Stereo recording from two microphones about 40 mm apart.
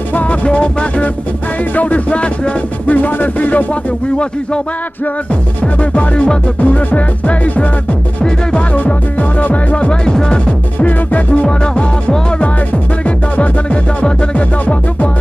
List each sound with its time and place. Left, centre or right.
0.1 s music: left
1.6 s music: left
3.0 s speech: left
5.3 s music: left
8.2 s music: left
9.4 s music: left
10.8 s music: left
11.4 s music: left